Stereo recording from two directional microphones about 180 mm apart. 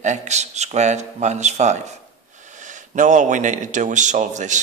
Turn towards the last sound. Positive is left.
turn(degrees=-40)  # may be behind; listen again after turning